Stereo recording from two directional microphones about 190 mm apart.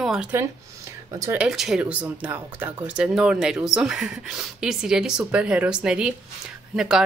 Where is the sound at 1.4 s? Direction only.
5° right (ahead or behind).